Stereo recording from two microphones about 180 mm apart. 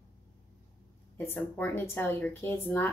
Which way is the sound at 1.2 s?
10° left (ahead or behind).